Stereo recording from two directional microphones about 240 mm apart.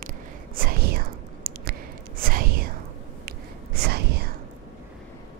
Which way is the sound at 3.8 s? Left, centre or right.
Right.